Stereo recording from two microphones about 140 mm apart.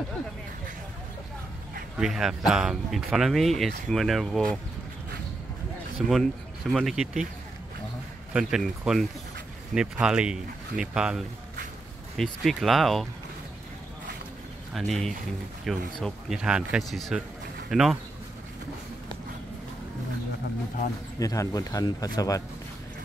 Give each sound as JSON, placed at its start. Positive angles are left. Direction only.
{"t": 2.0, "sound": "speech", "side_deg": -5}
{"t": 5.9, "sound": "speech", "side_deg": 0}
{"t": 8.3, "sound": "speech", "side_deg": -5}
{"t": 14.7, "sound": "speech", "side_deg": 0}
{"t": 21.2, "sound": "speech", "side_deg": 25}